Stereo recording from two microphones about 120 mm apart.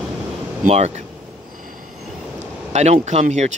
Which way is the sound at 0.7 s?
65° right (ahead or behind).